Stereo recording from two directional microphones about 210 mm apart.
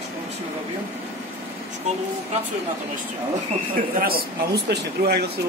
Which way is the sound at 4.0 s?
45° right (ahead or behind).